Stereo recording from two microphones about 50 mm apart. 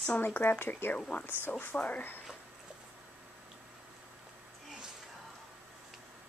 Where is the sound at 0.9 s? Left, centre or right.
Left.